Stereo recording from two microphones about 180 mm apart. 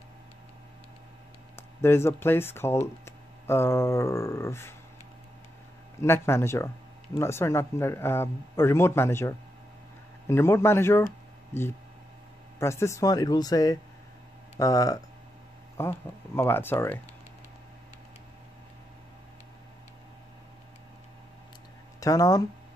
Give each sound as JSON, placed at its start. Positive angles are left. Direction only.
{"t": 1.8, "sound": "a man's voice", "side_deg": 15}
{"t": 5.9, "sound": "a man's voice", "side_deg": 15}
{"t": 12.5, "sound": "a man's voice", "side_deg": 15}
{"t": 22.0, "sound": "speech", "side_deg": 20}